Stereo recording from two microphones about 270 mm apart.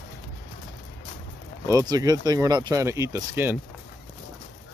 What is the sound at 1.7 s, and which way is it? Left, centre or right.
Speech, centre.